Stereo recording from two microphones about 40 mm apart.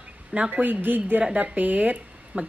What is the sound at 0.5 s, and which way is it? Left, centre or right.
Speech, right.